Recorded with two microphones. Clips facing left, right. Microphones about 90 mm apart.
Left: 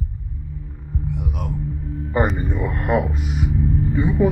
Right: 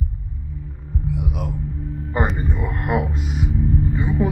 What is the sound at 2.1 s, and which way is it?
Speech, 5° right (ahead or behind).